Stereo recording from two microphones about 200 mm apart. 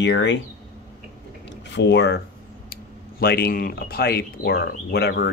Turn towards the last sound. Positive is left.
turn(degrees=55)  # may be behind; listen again after turning